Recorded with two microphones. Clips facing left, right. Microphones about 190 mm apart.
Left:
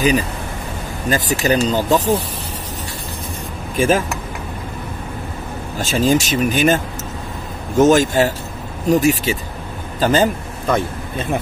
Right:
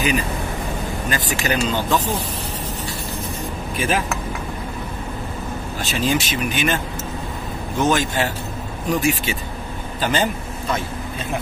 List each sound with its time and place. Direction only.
1.1 s speech: 40° left (ahead or behind)
3.7 s speech: 45° left (ahead or behind)
5.8 s a man's voice: 45° left (ahead or behind)